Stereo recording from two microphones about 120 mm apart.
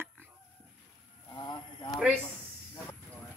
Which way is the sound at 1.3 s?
35° left (ahead or behind).